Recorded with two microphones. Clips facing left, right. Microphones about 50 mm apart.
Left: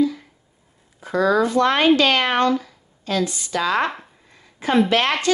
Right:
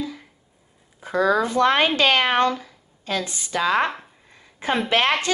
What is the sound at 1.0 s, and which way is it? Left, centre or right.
Speech, right.